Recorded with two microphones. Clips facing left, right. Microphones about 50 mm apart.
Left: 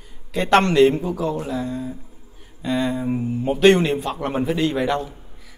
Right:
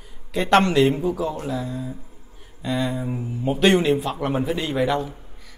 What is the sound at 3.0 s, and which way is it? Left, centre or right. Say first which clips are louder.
Mantra: left 5 dB; left.